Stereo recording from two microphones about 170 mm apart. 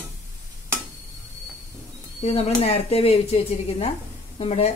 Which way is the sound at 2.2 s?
35° left (ahead or behind).